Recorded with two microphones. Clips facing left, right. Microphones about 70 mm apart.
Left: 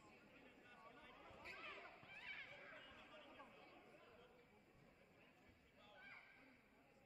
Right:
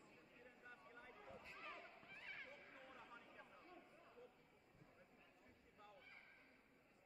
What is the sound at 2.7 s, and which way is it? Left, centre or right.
Chatter, right.